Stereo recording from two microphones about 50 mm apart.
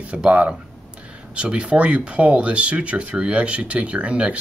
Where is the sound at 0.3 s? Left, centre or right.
Right.